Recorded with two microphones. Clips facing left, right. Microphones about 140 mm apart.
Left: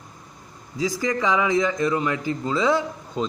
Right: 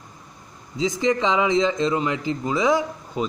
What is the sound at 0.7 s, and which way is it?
Speech, 20° right (ahead or behind).